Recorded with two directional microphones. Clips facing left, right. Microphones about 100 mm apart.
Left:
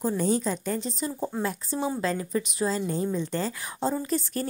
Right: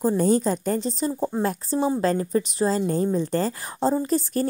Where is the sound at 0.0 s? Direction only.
40° right (ahead or behind).